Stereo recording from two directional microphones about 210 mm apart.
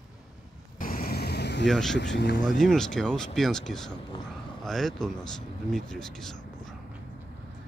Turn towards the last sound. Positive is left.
turn(degrees=0)  # may be behind; listen again after turning